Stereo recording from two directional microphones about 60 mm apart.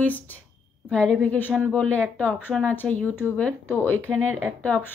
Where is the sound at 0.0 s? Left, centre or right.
Left.